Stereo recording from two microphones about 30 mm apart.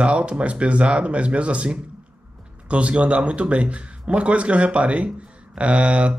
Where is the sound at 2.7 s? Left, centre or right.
Right.